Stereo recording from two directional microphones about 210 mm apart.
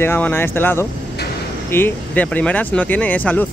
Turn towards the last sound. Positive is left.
turn(degrees=10)  # may be behind; listen again after turning